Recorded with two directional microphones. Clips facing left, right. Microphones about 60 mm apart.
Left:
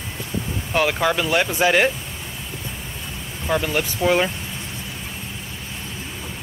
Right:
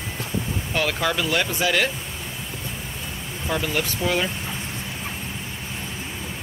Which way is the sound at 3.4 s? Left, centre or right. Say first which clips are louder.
Left 3 dB; centre.